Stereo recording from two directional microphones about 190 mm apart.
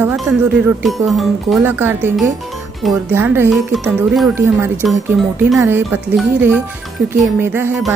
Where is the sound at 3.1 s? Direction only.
10° right (ahead or behind).